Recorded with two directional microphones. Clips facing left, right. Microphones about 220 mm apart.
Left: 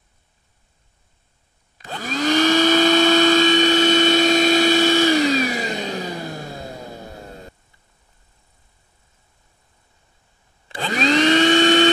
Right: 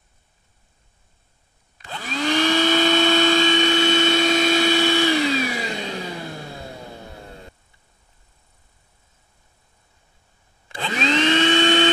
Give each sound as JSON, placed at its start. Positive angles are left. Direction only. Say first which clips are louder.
{"t": 1.9, "sound": "vacuum cleaner", "louder": "left 3 dB", "side_deg": 45}
{"t": 10.8, "sound": "vacuum cleaner", "louder": "left 3 dB", "side_deg": 40}